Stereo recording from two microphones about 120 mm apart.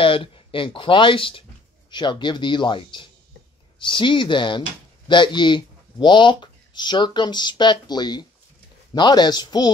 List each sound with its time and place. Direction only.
0.0 s speech: 45° left (ahead or behind)